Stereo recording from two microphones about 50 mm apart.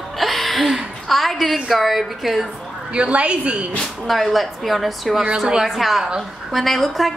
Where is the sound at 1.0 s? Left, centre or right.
Centre.